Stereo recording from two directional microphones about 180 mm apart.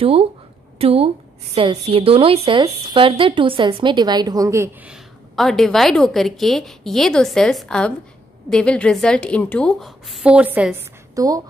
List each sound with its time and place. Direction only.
0.0 s a woman's voice: 30° right (ahead or behind)
4.8 s a woman's voice: centre (ahead or behind); by 11.4 s 20° right (ahead or behind)